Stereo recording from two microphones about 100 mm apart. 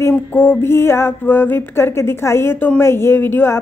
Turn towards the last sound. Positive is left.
turn(degrees=20)  # may be behind; listen again after turning